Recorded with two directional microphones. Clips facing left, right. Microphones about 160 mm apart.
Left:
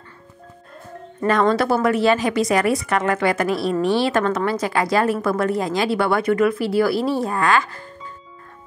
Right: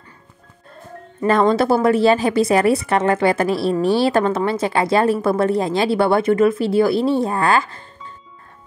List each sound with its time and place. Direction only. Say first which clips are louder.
1.5 s a woman's voice: right 3 dB; 30° right (ahead or behind)